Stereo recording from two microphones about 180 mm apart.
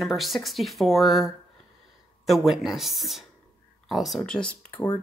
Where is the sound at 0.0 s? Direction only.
Centre (ahead or behind).